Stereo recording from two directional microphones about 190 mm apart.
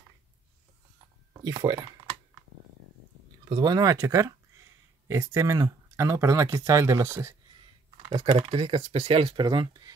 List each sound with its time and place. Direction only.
1.3 s speech: 20° right (ahead or behind)
3.4 s speech: 20° right (ahead or behind)
8.1 s speech: 25° right (ahead or behind)